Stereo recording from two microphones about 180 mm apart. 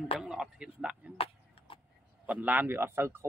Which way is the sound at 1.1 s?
30° left (ahead or behind).